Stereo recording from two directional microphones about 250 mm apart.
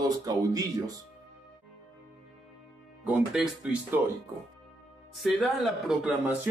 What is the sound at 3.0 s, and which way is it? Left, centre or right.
Speech, centre.